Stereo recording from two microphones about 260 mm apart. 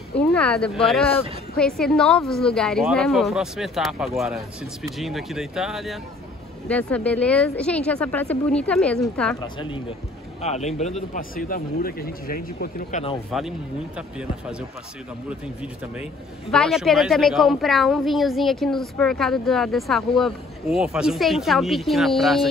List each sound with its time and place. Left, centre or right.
0.3 s a man's voice: centre
10.4 s a man's voice: left
13.3 s a man's voice: centre